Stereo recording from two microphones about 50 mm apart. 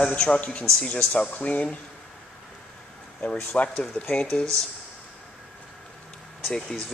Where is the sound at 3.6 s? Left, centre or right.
Left.